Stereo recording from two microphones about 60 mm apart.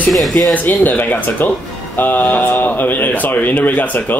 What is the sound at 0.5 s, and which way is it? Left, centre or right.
Speech, left.